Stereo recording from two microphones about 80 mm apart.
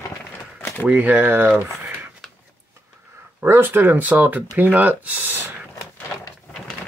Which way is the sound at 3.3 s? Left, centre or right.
Right.